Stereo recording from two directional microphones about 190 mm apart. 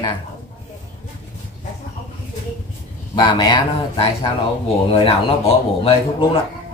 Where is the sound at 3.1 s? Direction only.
25° left (ahead or behind).